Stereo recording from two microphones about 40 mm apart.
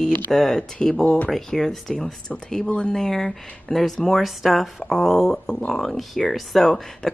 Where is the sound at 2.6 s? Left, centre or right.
Left.